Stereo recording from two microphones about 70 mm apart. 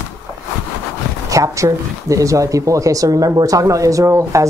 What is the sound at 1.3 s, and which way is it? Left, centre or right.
Speech, right.